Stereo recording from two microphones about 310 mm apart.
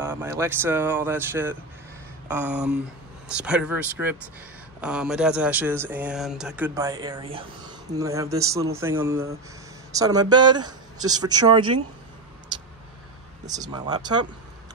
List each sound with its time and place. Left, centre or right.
0.0 s speech: centre
10.6 s speech: right
11.1 s speech: centre
13.5 s speech: centre